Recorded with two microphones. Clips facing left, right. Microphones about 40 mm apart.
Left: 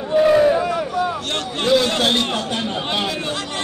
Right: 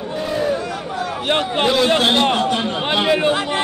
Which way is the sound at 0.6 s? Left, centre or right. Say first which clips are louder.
Left 4 dB; centre.